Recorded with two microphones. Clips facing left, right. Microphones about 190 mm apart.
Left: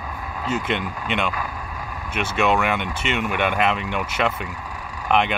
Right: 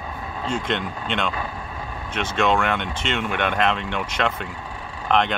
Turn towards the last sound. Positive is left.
turn(degrees=10)  # may be behind; listen again after turning